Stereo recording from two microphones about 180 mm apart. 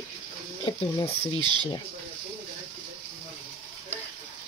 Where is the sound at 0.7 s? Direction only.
30° left (ahead or behind).